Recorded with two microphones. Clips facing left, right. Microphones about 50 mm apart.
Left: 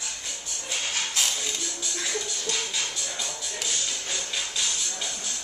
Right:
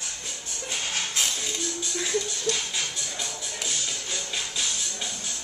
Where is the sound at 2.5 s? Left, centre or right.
Left.